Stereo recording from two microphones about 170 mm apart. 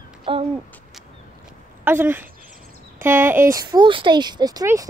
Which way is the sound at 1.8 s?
10° right (ahead or behind).